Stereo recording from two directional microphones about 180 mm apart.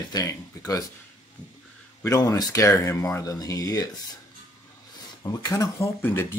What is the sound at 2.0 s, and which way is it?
Speech, 20° left (ahead or behind).